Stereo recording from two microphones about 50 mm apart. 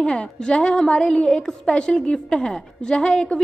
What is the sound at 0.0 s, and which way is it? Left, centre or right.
A woman's voice, centre.